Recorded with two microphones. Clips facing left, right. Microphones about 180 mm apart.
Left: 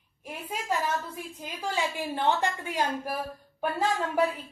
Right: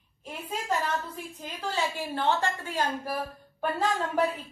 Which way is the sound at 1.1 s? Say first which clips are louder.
Left 1 dB; 10° left (ahead or behind).